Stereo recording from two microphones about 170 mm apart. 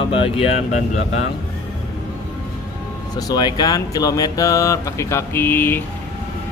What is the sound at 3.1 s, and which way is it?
Speech, 25° left (ahead or behind).